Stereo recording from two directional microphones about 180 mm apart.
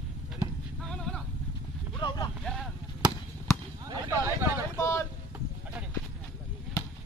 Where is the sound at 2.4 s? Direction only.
Centre (ahead or behind).